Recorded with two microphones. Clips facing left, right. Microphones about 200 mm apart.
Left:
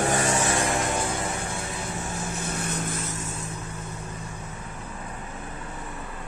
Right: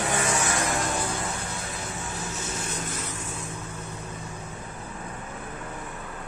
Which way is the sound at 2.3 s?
55° left (ahead or behind).